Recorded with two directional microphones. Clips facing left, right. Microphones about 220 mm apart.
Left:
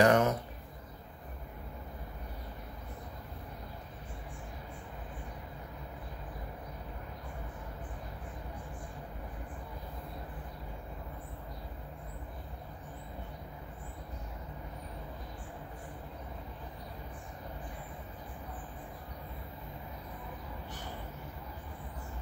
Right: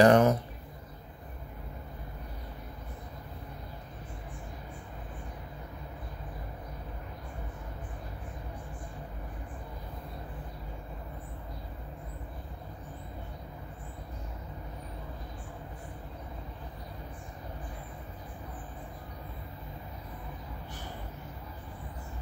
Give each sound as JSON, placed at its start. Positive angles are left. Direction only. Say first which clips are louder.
{"t": 0.0, "sound": "speech", "louder": "right 4 dB", "side_deg": -35}